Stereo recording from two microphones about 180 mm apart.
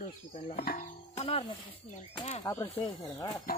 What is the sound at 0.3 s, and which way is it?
Speech, 30° left (ahead or behind).